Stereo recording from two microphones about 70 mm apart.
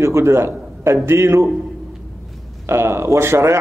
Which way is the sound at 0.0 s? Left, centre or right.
Right.